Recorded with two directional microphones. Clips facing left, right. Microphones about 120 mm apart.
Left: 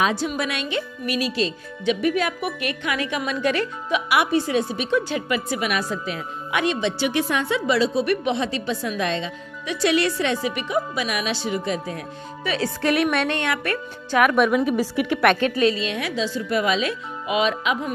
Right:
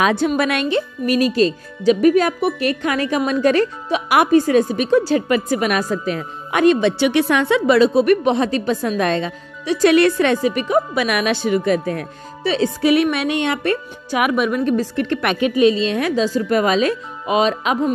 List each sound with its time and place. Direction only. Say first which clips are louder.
0.0 s speech: right 6 dB; 60° right (ahead or behind)
0.7 s speech: right 8 dB; 40° right (ahead or behind)
8.2 s speech: right 6 dB; 45° right (ahead or behind)
11.0 s speech: right 7 dB; 60° right (ahead or behind)
12.4 s speech: right 7 dB; 25° right (ahead or behind)
12.8 s music: right 4 dB; centre (ahead or behind)
13.4 s speech: right 6 dB; 25° right (ahead or behind)
14.3 s a woman's voice: right 1 dB; centre (ahead or behind)
15.2 s a woman's voice: right 3 dB; 10° right (ahead or behind)
15.7 s a woman's voice: right 7 dB; 30° right (ahead or behind)
16.0 s speech: right 7 dB; 45° right (ahead or behind)